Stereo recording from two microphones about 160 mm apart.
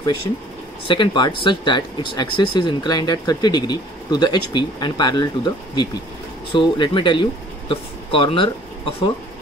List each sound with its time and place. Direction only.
0.8 s speech: 30° left (ahead or behind)